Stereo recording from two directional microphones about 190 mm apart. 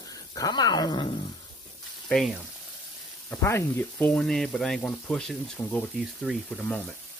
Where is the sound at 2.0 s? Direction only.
Centre (ahead or behind).